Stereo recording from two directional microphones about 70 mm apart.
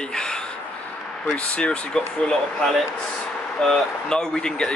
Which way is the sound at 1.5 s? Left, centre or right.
Centre.